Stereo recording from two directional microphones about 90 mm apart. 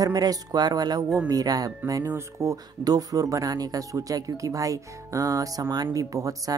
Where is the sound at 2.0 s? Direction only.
30° right (ahead or behind).